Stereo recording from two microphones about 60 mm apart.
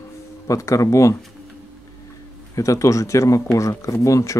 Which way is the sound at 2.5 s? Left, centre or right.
Left.